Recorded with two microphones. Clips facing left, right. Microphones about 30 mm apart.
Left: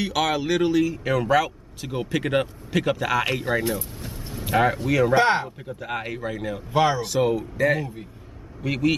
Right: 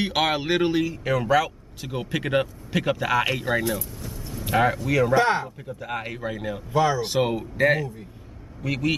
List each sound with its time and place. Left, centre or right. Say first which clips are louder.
0.0 s speech: even; right
0.9 s speech: left 1 dB; centre
4.0 s vehicle: even; left
4.5 s speech: left 1 dB; centre
6.7 s speech: left 1 dB; left
7.0 s speech: left 1 dB; right
8.6 s speech: left 2 dB; centre